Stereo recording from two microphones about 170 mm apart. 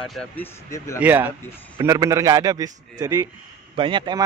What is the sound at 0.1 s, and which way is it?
Speech, 5° left (ahead or behind).